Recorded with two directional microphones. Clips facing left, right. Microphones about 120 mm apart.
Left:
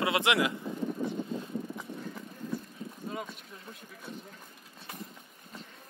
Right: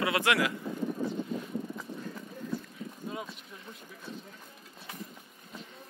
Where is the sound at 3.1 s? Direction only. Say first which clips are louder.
Left 1 dB; centre (ahead or behind).